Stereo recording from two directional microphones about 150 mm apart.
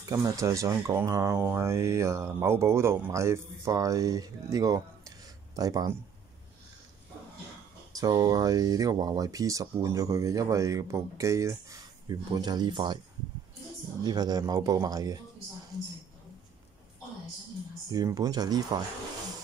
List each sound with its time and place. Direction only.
0.1 s speech: 20° right (ahead or behind)
7.9 s speech: 25° right (ahead or behind)
14.0 s a woman's voice: 30° right (ahead or behind)
17.9 s speech: 25° right (ahead or behind)